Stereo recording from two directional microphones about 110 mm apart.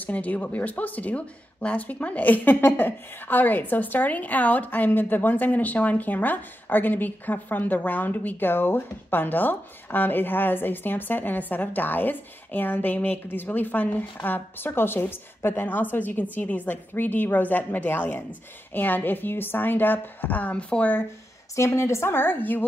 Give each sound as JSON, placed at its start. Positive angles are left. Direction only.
{"t": 0.0, "sound": "speech", "side_deg": 15}
{"t": 21.5, "sound": "a woman's voice", "side_deg": 25}